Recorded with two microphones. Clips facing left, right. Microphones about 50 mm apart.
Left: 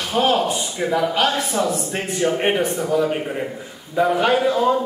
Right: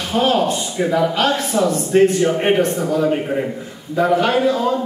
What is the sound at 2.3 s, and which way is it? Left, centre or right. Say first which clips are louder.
Speech: right 3 dB; centre.